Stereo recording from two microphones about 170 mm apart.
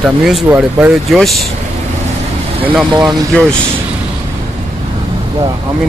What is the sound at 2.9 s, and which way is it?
Speech, 25° right (ahead or behind).